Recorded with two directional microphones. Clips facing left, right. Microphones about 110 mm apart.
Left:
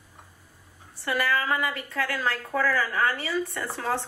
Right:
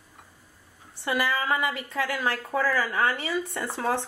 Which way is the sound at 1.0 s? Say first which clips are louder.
Even; 20° right (ahead or behind).